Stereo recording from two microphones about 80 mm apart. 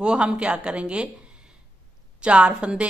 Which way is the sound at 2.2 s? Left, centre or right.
Centre.